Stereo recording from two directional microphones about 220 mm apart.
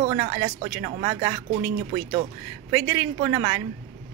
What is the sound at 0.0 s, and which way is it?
Speech, 20° right (ahead or behind).